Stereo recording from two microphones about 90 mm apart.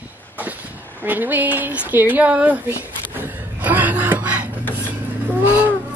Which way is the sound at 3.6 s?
20° right (ahead or behind).